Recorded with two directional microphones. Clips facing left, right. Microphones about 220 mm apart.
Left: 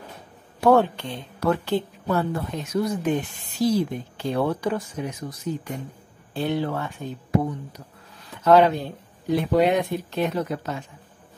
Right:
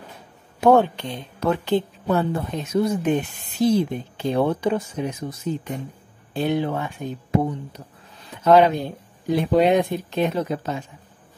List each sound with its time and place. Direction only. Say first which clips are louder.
0.6 s speech: right 2 dB; 20° right (ahead or behind)